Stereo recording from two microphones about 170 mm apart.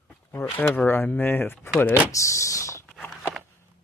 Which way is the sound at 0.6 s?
10° left (ahead or behind).